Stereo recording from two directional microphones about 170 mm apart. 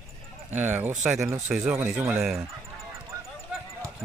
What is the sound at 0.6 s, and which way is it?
Speech, 10° right (ahead or behind).